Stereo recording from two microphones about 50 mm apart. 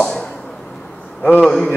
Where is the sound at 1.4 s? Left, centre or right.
Centre.